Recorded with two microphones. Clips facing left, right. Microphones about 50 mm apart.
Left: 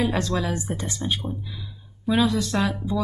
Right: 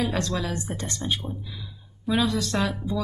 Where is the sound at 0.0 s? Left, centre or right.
Centre.